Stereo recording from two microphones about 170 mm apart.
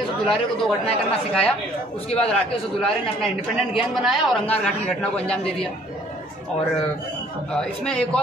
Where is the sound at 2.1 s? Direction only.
35° left (ahead or behind).